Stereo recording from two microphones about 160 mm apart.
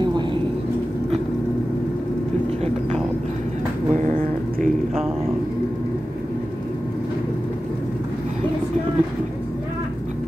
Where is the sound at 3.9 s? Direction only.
55° right (ahead or behind).